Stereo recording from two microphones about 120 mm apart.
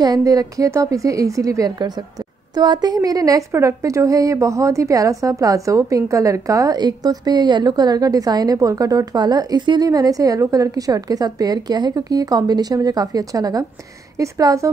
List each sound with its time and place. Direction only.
0.0 s a woman's voice: 30° right (ahead or behind)